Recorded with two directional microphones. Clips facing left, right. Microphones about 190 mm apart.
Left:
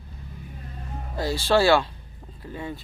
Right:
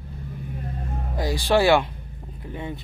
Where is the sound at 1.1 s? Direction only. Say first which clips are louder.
Right 1 dB; 15° right (ahead or behind).